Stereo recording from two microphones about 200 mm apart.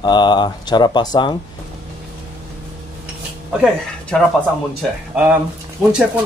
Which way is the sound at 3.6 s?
Centre (ahead or behind).